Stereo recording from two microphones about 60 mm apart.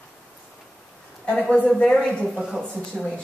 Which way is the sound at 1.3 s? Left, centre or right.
Centre.